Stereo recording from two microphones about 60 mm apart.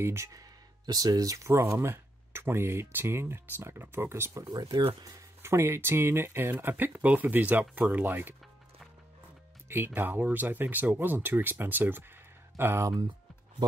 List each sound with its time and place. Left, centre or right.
0.0 s speech: right
0.9 s speech: right